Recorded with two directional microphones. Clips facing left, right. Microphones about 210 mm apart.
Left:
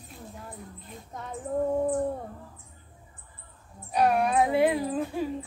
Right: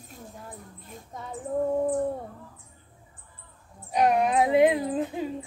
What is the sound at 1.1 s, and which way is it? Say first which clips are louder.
Child singing: even; centre (ahead or behind).